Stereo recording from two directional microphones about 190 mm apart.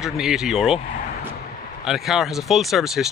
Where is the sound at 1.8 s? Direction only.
Centre (ahead or behind).